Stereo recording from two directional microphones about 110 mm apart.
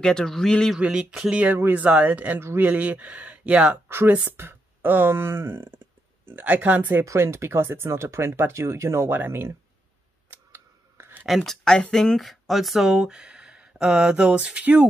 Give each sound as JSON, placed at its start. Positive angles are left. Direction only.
{"t": 0.0, "sound": "speech", "side_deg": 5}
{"t": 0.7, "sound": "speech", "side_deg": -10}
{"t": 10.3, "sound": "scissors", "side_deg": -20}
{"t": 11.2, "sound": "speech", "side_deg": 0}